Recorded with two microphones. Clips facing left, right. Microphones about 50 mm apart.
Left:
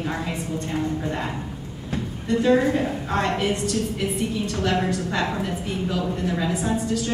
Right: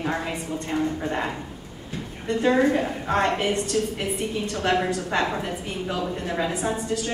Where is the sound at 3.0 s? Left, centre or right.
Right.